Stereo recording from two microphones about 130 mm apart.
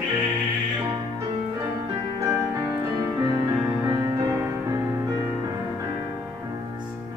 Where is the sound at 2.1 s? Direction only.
25° right (ahead or behind).